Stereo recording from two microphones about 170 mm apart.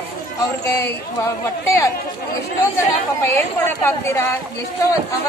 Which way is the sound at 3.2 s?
15° left (ahead or behind).